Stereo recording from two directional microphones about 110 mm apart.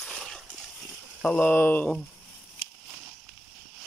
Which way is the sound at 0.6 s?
5° left (ahead or behind).